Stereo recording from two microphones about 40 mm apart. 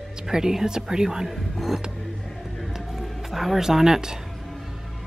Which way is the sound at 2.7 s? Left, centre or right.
Centre.